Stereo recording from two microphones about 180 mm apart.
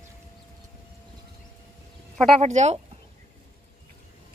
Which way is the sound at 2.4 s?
40° right (ahead or behind).